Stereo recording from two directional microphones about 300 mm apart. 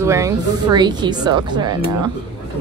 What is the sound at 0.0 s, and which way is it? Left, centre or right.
A woman's voice, centre.